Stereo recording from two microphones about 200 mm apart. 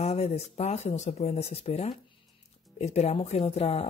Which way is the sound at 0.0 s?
30° left (ahead or behind).